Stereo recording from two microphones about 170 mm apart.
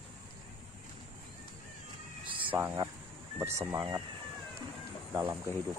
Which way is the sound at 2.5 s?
10° right (ahead or behind).